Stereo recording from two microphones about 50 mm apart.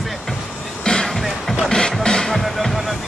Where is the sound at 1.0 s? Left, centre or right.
Centre.